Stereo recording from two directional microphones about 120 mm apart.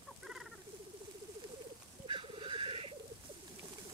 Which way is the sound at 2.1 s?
45° right (ahead or behind).